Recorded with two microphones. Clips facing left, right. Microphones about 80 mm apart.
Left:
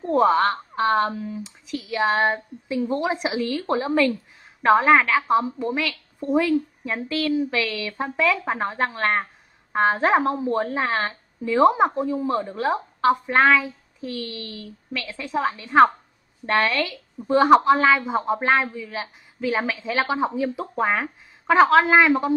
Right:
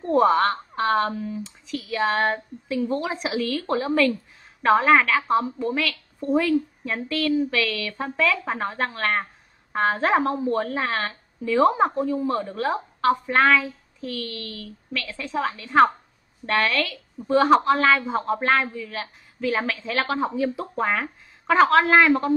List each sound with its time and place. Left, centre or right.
0.0 s speech: centre
3.0 s a woman's voice: centre
15.6 s speech: centre
16.4 s a woman's voice: centre